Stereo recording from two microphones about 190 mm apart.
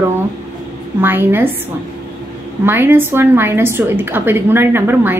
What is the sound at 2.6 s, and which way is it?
A woman's voice, 10° right (ahead or behind).